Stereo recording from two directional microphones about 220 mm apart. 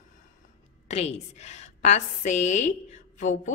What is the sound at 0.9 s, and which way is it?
A woman's voice, 30° left (ahead or behind).